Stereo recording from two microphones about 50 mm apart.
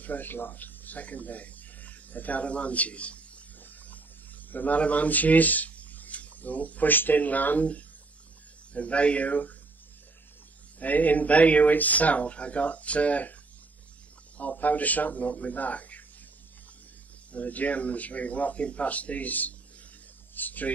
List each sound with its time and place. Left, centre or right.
0.0 s speech: left
3.6 s a sound: left
4.5 s speech: left
10.8 s speech: left
14.4 s speech: left
17.3 s speech: left